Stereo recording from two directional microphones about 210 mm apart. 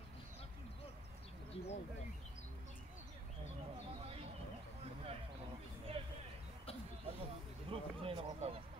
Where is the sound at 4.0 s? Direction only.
25° right (ahead or behind).